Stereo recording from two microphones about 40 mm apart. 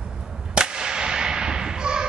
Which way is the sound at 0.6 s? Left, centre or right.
Centre.